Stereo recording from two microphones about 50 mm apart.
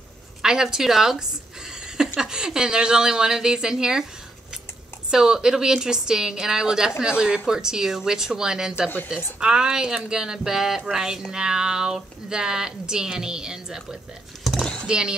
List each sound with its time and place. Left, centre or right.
0.4 s speech: centre
2.1 s speech: centre
5.1 s speech: centre
14.4 s a sound: centre
14.9 s speech: centre